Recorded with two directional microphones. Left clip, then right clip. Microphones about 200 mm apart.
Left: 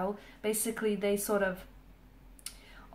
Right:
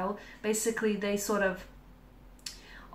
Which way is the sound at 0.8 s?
45° left (ahead or behind).